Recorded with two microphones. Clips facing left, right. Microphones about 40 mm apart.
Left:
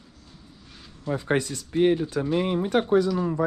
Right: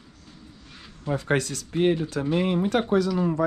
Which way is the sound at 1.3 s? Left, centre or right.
Left.